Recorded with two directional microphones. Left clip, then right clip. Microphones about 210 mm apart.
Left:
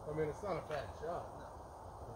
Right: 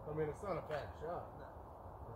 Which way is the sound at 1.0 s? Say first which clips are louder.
Left 3 dB; 15° right (ahead or behind).